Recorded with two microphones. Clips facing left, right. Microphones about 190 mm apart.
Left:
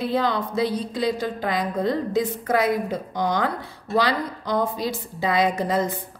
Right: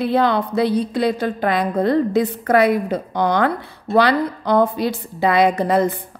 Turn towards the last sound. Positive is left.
turn(degrees=-60)  # may be behind; listen again after turning